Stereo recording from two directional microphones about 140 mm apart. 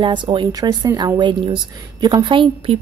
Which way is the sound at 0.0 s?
35° right (ahead or behind).